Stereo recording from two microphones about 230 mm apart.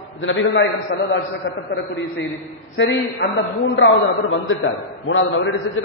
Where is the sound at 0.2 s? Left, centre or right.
Left.